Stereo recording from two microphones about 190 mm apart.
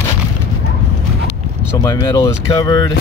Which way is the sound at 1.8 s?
20° left (ahead or behind).